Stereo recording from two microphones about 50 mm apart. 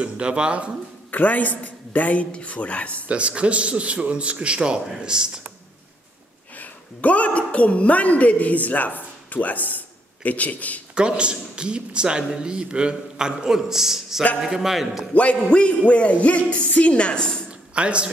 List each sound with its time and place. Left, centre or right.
0.0 s a man's voice: right
1.1 s a woman's voice: left
3.1 s a man's voice: right
6.5 s a woman's voice: left
11.0 s a man's voice: centre
15.1 s speech: left
17.5 s a sound: right